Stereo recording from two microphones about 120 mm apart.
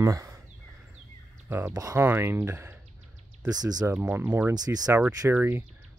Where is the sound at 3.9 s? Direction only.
15° right (ahead or behind).